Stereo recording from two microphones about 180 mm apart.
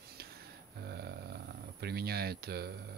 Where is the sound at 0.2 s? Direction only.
60° right (ahead or behind).